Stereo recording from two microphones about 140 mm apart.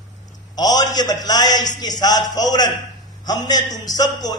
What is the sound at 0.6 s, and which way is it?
A man's voice, 30° left (ahead or behind).